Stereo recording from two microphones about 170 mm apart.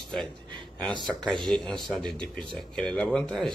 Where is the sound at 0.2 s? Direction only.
25° right (ahead or behind).